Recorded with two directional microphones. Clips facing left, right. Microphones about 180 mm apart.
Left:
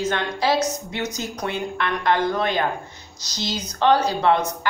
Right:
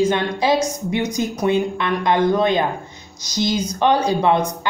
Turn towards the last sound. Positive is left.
turn(degrees=-15)  # may be behind; listen again after turning